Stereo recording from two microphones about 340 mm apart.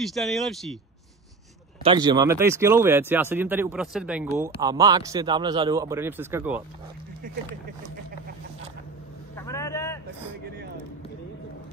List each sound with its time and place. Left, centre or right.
0.0 s speech: centre
1.8 s a man's voice: centre
9.3 s vehicle: centre